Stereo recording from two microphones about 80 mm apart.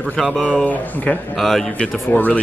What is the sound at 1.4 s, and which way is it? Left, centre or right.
Speech, centre.